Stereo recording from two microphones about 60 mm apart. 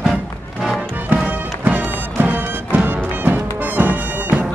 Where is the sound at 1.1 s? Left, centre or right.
Right.